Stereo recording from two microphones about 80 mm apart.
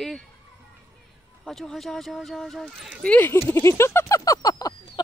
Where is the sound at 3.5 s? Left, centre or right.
Left.